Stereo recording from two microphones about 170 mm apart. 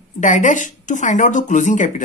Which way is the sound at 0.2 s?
45° left (ahead or behind).